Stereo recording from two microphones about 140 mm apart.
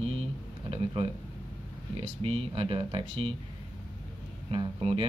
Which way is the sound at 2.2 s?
40° right (ahead or behind).